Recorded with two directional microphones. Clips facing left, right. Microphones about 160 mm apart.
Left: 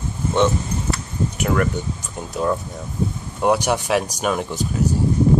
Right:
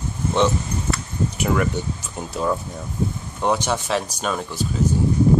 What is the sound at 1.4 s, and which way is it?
Speech, 5° right (ahead or behind).